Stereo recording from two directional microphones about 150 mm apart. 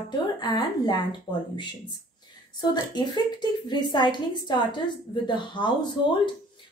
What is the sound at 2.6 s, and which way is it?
A woman's voice, 30° left (ahead or behind).